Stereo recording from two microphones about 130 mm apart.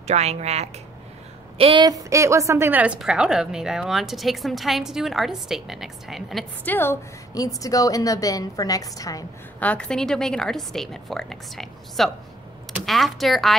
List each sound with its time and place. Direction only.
0.0 s speech: 55° right (ahead or behind)
1.6 s speech: 40° right (ahead or behind)
1.9 s a woman's voice: 25° right (ahead or behind); by 6.4 s centre (ahead or behind)
6.6 s a woman's voice: 15° left (ahead or behind)
9.6 s a woman's voice: 10° left (ahead or behind)